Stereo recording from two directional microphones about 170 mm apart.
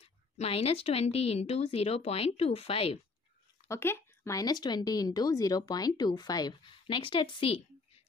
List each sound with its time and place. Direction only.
0.0 s a woman's voice: 35° left (ahead or behind)
3.6 s speech: 15° left (ahead or behind); by 8.0 s 30° left (ahead or behind)